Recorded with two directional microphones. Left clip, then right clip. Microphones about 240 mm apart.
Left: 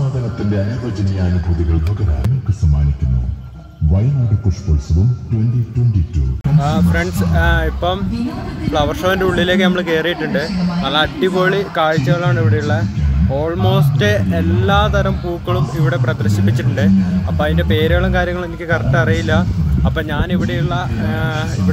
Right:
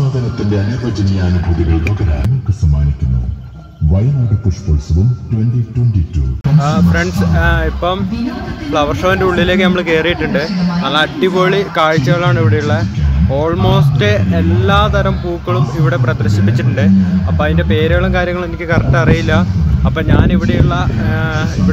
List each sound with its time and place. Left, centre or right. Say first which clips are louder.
0.0 s a man's voice: right 4 dB; right
6.6 s speech: right 3 dB; centre